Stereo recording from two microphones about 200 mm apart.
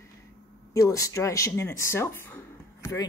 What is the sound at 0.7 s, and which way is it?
Speech, 15° left (ahead or behind).